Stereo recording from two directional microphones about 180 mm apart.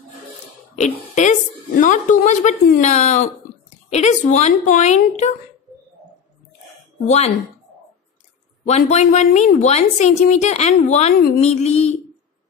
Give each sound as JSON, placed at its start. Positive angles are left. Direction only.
{"t": 0.7, "sound": "a woman's voice", "side_deg": 40}
{"t": 7.1, "sound": "a woman's voice", "side_deg": 35}
{"t": 8.6, "sound": "a woman's voice", "side_deg": 40}